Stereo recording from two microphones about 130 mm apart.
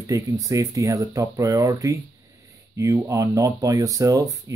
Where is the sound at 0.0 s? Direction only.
25° right (ahead or behind).